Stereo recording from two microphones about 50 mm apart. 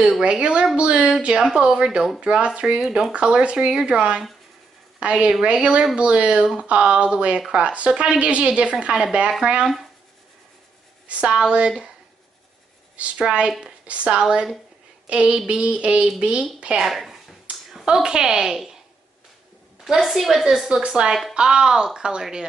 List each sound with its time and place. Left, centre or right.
0.2 s a woman's voice: right
1.5 s a woman's voice: centre
11.1 s speech: right
12.9 s speech: right
15.0 s a sound: right
15.3 s speech: right
16.8 s a sound: centre
17.8 s a woman's voice: centre
19.8 s a woman's voice: centre
20.8 s a woman's voice: right